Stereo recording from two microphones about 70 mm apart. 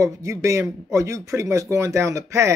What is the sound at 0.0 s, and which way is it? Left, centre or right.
Speech, right.